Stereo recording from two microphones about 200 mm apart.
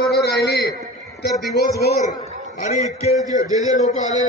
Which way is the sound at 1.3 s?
15° left (ahead or behind).